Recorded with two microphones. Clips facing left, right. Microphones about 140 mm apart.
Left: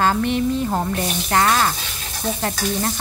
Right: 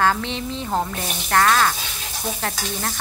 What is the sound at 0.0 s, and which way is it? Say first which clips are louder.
Frying: left 3 dB; 10° left (ahead or behind).